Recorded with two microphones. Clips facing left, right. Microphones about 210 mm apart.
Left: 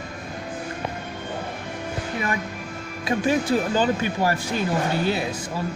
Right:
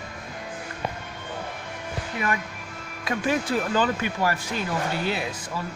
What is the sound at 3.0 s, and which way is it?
Speech, 30° left (ahead or behind).